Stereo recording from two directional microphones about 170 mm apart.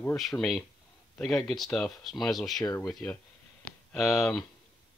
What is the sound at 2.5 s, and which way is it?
Speech, 20° left (ahead or behind).